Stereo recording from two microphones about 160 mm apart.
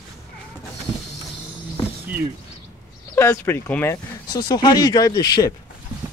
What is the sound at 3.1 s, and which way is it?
Speech, 15° left (ahead or behind).